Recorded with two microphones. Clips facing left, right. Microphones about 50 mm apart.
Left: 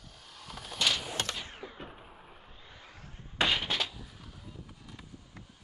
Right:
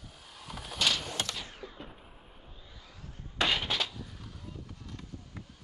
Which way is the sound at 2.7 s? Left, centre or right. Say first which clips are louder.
Left 2 dB; left.